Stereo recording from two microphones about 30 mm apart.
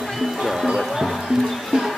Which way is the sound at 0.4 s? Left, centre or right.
Centre.